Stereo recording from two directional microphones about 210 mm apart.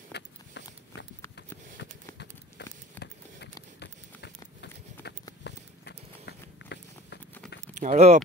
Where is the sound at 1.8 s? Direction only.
55° left (ahead or behind).